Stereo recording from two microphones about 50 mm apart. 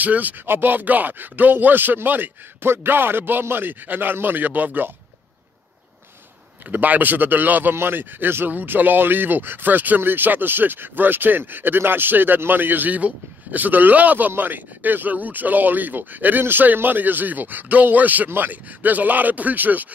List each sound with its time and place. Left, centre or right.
0.0 s speech: right
6.7 s speech: right
7.7 s speech: right